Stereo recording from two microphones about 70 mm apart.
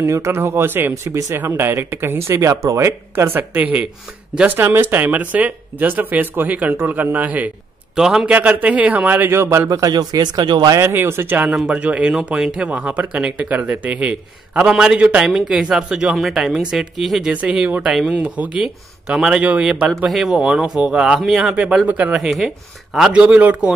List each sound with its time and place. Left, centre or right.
0.0 s a man's voice: right
8.0 s speech: centre
8.3 s speech: right
9.7 s speech: right
10.8 s speech: right
15.2 s speech: centre
17.3 s speech: centre
20.1 s speech: centre
21.8 s speech: right
22.1 s speech: centre
23.2 s speech: right